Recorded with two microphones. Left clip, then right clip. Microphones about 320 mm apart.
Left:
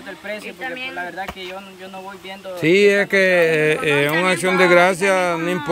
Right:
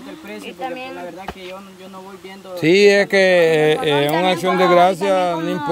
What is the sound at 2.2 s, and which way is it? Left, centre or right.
Speech, centre.